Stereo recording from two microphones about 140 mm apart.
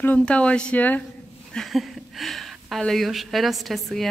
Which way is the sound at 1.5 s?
Centre (ahead or behind).